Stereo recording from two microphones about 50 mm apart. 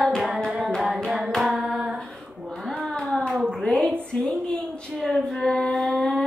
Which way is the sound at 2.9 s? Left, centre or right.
Centre.